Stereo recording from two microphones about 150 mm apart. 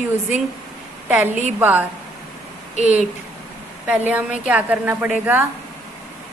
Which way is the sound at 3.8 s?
10° right (ahead or behind).